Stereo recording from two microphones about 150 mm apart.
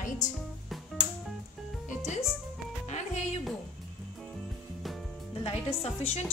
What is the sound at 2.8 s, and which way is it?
Music, 50° left (ahead or behind).